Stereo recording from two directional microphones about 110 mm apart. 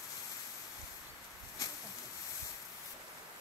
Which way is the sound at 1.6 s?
30° left (ahead or behind).